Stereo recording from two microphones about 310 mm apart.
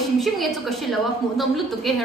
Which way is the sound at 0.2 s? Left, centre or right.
Centre.